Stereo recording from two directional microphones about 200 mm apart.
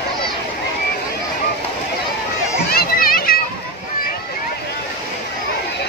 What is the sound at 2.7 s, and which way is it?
Children playing, 45° left (ahead or behind).